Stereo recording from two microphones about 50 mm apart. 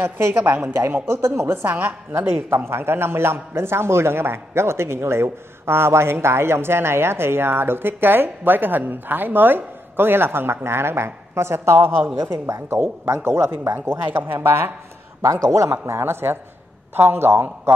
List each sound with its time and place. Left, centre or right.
0.3 s a woman's voice: right
1.0 s speech: right
1.7 s a woman's voice: right
2.5 s a man's voice: right
15.2 s a man's voice: right
15.8 s a man's voice: right